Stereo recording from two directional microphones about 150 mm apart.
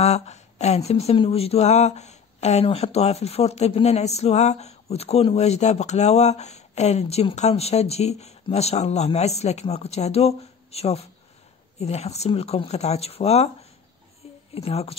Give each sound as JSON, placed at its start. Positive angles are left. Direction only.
{"t": 0.0, "sound": "speech", "side_deg": 45}